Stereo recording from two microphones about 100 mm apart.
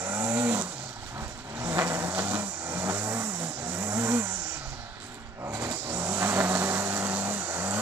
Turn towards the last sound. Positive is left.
turn(degrees=-20)  # may be behind; listen again after turning